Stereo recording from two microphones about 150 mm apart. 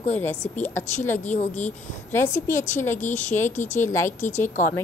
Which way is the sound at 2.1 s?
15° left (ahead or behind).